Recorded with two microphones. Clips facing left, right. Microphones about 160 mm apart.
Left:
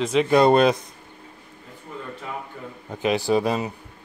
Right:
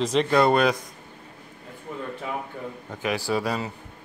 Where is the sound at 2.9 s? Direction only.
20° left (ahead or behind).